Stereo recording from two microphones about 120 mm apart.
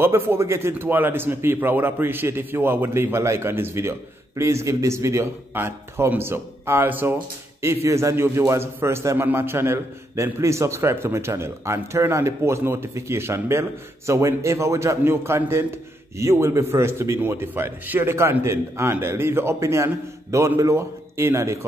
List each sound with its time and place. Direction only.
0.0 s a man's voice: 20° right (ahead or behind)